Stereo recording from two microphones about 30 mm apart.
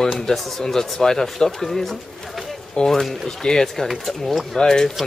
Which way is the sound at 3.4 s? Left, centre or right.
Left.